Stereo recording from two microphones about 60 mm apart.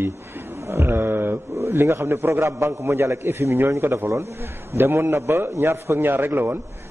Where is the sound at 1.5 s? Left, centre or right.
Right.